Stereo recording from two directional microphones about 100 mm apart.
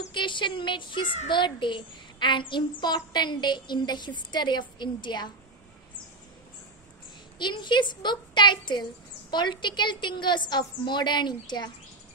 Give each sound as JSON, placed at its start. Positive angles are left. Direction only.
{"t": 0.1, "sound": "a child's voice", "side_deg": 55}
{"t": 7.3, "sound": "a child's voice", "side_deg": 50}